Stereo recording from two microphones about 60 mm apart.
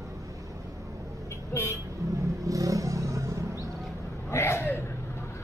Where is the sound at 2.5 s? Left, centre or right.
Right.